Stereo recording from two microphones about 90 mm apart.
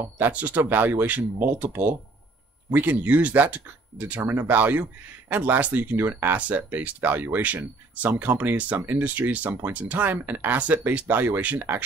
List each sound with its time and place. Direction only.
0.0 s speech: 20° right (ahead or behind)